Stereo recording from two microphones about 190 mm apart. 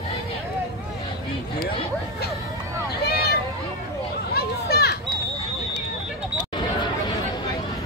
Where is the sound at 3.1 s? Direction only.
55° left (ahead or behind).